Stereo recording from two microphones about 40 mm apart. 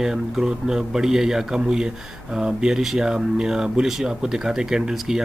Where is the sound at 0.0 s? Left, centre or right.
Centre.